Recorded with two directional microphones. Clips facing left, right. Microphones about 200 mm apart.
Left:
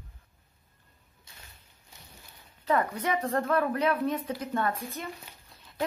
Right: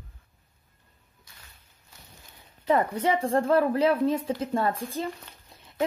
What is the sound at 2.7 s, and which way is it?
Speech, 25° right (ahead or behind).